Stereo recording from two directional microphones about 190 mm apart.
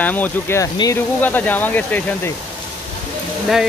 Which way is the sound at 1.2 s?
10° left (ahead or behind).